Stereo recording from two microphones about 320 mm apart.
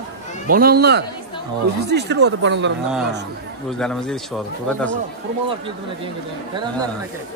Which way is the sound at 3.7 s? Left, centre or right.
Centre.